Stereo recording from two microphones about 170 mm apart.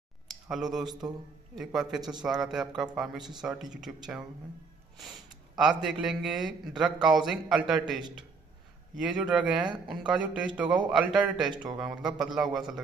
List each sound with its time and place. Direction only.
0.3 s a man's voice: centre (ahead or behind)
5.6 s a man's voice: 5° right (ahead or behind)
11.5 s speech: 25° right (ahead or behind)
12.2 s a man's voice: 5° right (ahead or behind)